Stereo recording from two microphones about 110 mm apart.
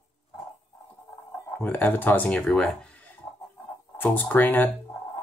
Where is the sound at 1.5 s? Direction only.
15° left (ahead or behind).